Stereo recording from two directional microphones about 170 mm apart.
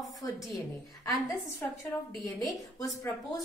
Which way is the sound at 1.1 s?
15° left (ahead or behind).